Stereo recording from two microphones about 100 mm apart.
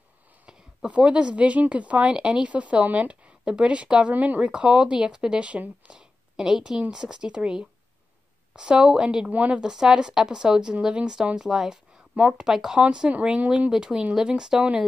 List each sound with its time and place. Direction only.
0.5 s speech: 10° right (ahead or behind)